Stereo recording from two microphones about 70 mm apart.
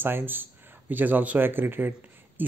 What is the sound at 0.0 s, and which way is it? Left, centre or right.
Speech, right.